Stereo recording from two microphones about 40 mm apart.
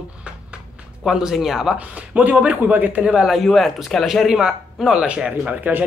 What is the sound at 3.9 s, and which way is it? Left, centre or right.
Speech, centre.